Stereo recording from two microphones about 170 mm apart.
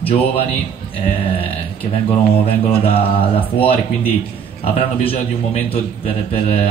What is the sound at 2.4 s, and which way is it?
A man's voice, 35° left (ahead or behind).